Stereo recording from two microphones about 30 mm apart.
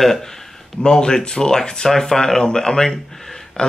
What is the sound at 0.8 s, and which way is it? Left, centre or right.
Speech, left.